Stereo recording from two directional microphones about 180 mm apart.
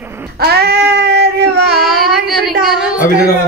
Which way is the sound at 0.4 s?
60° right (ahead or behind).